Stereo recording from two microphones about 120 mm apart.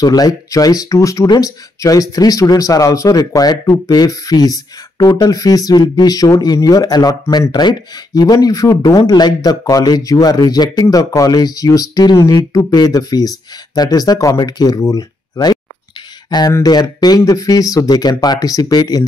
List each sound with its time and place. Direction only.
0.0 s speech: 30° left (ahead or behind)